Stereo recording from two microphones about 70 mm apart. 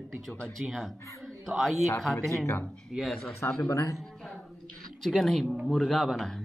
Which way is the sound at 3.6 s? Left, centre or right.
Left.